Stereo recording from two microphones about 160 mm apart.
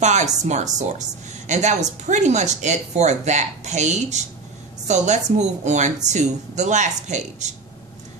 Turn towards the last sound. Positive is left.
turn(degrees=-45)  # may be behind; listen again after turning